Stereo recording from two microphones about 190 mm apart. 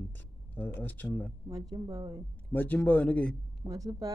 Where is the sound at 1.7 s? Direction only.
20° right (ahead or behind).